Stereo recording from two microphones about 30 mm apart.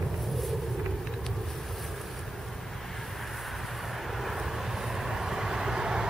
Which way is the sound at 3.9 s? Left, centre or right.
Centre.